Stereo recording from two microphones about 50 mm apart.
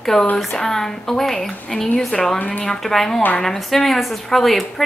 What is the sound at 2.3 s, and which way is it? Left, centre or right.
Speech, left.